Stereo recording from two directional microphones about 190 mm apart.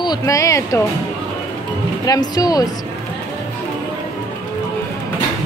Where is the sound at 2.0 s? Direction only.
20° left (ahead or behind).